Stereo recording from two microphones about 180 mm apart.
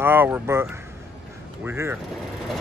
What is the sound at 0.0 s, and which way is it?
Speech, 10° right (ahead or behind).